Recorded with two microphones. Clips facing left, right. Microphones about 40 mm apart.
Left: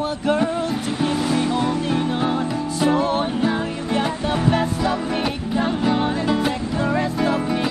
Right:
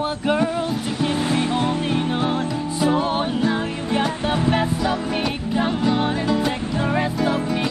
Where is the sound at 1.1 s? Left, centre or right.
Right.